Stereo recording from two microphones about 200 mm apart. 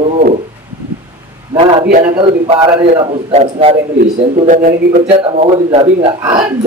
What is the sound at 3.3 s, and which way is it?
A man's voice, 35° right (ahead or behind).